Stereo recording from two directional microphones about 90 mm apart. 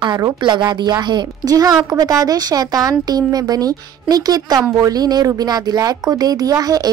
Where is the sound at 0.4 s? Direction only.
60° right (ahead or behind).